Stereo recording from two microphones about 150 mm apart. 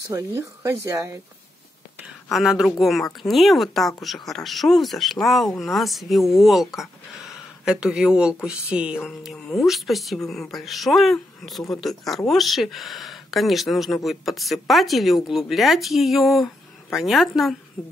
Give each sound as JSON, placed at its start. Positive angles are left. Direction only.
{"t": 0.1, "sound": "speech", "side_deg": -15}
{"t": 2.0, "sound": "speech", "side_deg": 0}